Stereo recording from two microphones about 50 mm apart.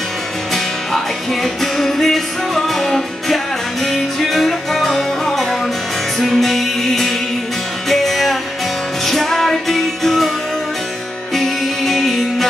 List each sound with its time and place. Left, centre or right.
0.9 s music: centre
11.3 s music: centre